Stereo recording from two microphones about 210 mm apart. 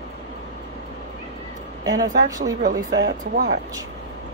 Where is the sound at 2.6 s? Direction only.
40° right (ahead or behind).